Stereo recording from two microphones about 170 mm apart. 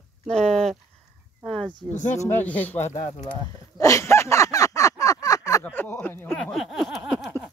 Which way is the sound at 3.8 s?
20° left (ahead or behind).